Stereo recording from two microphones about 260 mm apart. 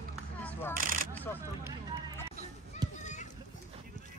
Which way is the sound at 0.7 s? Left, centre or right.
Right.